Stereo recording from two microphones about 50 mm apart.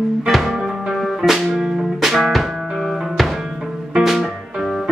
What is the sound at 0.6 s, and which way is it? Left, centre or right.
Music, centre.